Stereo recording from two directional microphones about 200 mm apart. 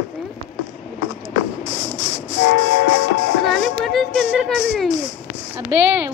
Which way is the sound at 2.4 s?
80° left.